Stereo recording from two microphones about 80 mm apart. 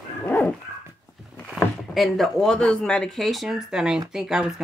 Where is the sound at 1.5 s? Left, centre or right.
Centre.